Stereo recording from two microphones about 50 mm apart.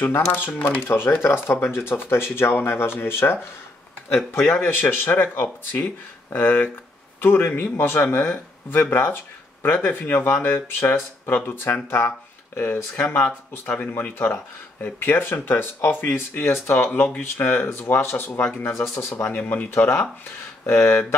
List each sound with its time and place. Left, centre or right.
0.1 s speech: left
4.4 s speech: left
14.1 s speech: left
17.4 s speech: left
17.8 s speech: left
19.2 s speech: left
20.6 s speech: left